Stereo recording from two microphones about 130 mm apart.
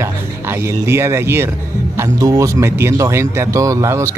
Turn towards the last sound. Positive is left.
turn(degrees=-20)  # may be behind; listen again after turning